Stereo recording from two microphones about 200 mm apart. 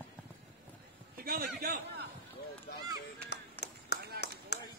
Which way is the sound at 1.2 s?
50° right (ahead or behind).